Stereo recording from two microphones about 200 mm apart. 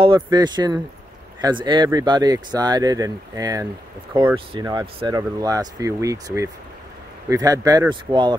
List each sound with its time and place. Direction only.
0.0 s speech: 25° right (ahead or behind)